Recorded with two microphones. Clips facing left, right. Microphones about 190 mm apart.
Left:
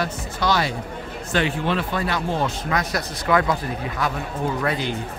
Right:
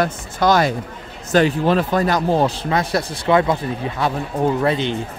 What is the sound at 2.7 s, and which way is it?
Speech, 25° right (ahead or behind).